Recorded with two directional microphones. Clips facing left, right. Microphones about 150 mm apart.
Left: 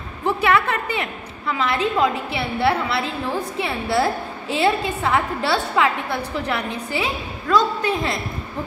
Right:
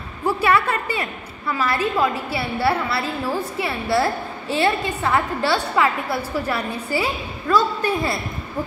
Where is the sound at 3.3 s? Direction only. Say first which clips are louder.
Even; centre (ahead or behind).